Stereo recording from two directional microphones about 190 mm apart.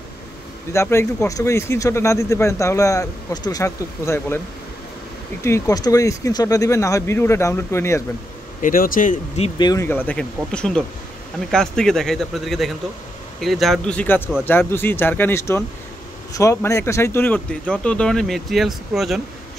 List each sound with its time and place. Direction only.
0.7 s speech: 15° left (ahead or behind)
5.4 s speech: 15° left (ahead or behind)
8.6 s speech: 45° left (ahead or behind)
9.6 s speech: 15° left (ahead or behind); by 19.2 s centre (ahead or behind)